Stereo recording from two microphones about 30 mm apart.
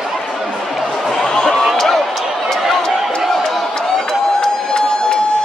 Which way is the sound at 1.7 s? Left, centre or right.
Centre.